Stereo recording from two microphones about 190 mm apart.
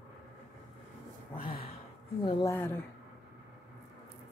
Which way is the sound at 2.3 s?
20° left (ahead or behind).